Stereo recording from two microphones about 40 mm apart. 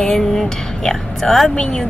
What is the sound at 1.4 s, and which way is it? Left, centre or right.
Speech, left.